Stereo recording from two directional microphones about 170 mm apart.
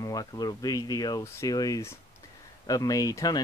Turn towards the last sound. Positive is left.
turn(degrees=20)  # may be behind; listen again after turning